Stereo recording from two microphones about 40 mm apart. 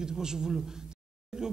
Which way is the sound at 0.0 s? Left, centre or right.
Centre.